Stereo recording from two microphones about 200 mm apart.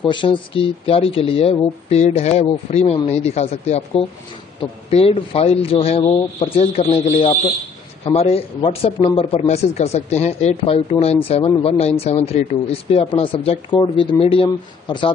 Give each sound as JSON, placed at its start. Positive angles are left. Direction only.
{"t": 0.0, "sound": "a man's voice", "side_deg": 25}